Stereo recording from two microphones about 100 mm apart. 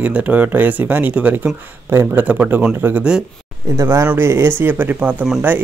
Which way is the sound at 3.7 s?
30° right (ahead or behind).